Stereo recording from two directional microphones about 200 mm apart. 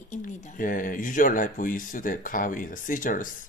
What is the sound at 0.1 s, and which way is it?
Speech, 40° left (ahead or behind).